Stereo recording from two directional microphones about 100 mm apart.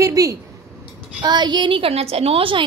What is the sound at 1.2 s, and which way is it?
A woman's voice, 45° right (ahead or behind).